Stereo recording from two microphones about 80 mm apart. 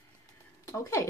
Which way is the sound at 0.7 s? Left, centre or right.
Left.